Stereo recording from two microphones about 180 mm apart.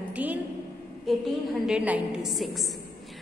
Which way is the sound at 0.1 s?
10° right (ahead or behind).